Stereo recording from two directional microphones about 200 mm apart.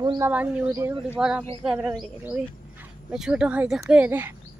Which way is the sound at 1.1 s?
5° right (ahead or behind).